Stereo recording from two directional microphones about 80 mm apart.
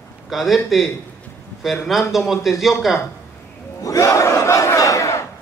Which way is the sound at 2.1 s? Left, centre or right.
Centre.